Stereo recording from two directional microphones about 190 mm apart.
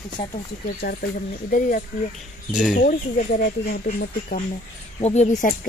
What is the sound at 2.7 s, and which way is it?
Speech, 50° left (ahead or behind).